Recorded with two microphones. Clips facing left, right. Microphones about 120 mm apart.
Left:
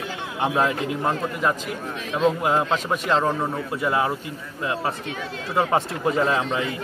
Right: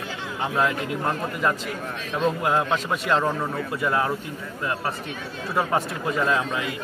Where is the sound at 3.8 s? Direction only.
15° left (ahead or behind).